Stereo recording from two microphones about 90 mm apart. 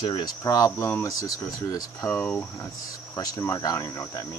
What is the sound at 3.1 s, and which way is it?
Speech, 45° left (ahead or behind).